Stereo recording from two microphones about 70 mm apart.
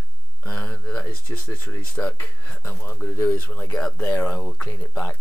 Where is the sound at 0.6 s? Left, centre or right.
Left.